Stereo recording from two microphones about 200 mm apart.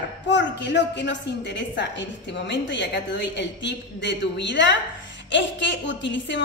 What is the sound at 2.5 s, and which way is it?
A woman's voice, 60° left (ahead or behind).